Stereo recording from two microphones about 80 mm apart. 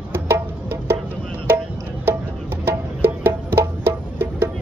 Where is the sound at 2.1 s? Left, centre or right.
Right.